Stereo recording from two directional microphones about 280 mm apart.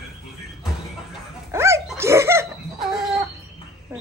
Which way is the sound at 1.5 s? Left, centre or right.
Centre.